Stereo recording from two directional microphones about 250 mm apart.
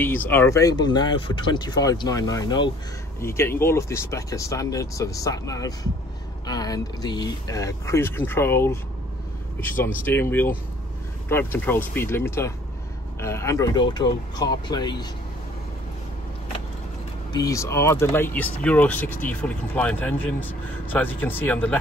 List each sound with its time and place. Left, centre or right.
0.0 s speech: centre
17.3 s speech: centre